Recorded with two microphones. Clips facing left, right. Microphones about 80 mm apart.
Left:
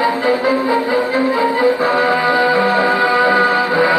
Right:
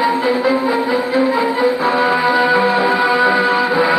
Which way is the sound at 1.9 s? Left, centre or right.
Centre.